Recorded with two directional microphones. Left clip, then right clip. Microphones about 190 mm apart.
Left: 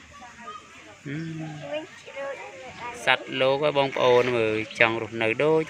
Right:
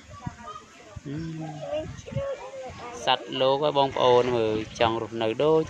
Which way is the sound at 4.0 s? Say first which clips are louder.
Left 1 dB; 20° left (ahead or behind).